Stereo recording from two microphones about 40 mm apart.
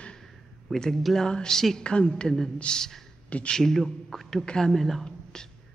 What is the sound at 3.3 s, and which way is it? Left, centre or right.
Speech, left.